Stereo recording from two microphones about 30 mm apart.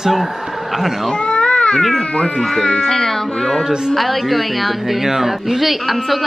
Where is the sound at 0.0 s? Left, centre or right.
Centre.